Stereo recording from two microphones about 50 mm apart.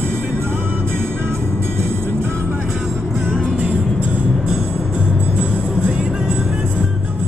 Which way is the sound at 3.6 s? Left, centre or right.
Right.